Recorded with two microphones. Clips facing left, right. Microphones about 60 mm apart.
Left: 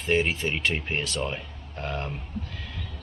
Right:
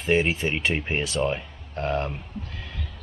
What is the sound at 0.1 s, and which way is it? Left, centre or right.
Speech, centre.